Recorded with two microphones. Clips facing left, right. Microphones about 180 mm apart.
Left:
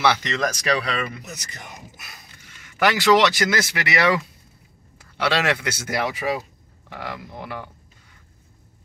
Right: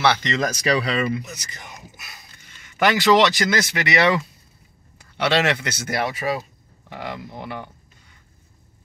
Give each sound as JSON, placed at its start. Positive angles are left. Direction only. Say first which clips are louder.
{"t": 0.0, "sound": "speech", "louder": "right 1 dB", "side_deg": 0}
{"t": 2.6, "sound": "speech", "louder": "right 1 dB", "side_deg": 5}